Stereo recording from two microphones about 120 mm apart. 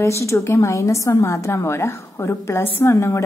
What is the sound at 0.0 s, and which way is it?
A woman's voice, 25° left (ahead or behind).